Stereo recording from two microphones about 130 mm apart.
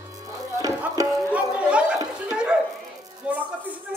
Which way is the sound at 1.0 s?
25° right (ahead or behind).